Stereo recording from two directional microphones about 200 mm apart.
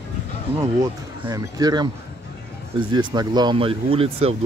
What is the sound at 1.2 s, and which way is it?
Speech, 20° right (ahead or behind).